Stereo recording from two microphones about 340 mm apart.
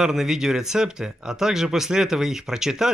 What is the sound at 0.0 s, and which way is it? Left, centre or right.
Speech, centre.